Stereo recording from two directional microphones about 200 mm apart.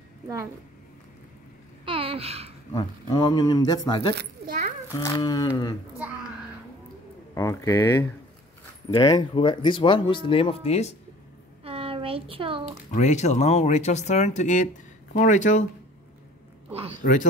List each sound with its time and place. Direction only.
1.9 s babbling: 25° right (ahead or behind)
2.7 s speech: 20° left (ahead or behind)
4.1 s a child's voice: 55° right (ahead or behind)
4.9 s speech: 20° left (ahead or behind)
7.3 s speech: 15° left (ahead or behind); by 11.0 s 30° left (ahead or behind)
11.6 s a sound: 30° right (ahead or behind)
12.9 s speech: 35° left (ahead or behind)
17.0 s speech: 40° left (ahead or behind)